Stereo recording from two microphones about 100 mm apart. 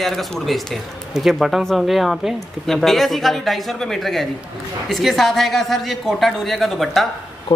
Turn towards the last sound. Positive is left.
turn(degrees=0)  # may be behind; listen again after turning